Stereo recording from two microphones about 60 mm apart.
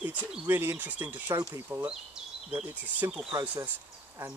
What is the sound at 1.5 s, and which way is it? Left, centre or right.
Speech, right.